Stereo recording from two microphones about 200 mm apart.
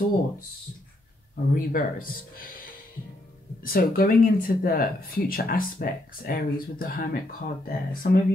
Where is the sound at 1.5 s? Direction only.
45° left (ahead or behind).